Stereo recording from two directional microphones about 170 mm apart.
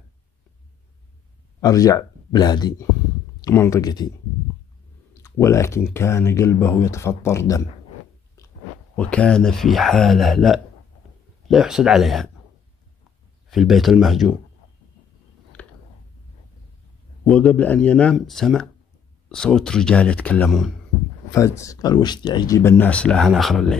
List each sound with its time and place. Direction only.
1.6 s speech: 20° left (ahead or behind)
5.2 s speech: 15° left (ahead or behind)
8.9 s speech: 5° left (ahead or behind)
13.5 s speech: centre (ahead or behind)
15.6 s a sound: 10° left (ahead or behind)
17.3 s speech: 5° left (ahead or behind)
21.3 s speech: 15° left (ahead or behind)
22.6 s speech: 10° left (ahead or behind)